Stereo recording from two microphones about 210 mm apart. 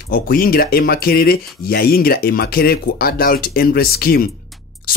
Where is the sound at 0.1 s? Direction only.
45° left (ahead or behind).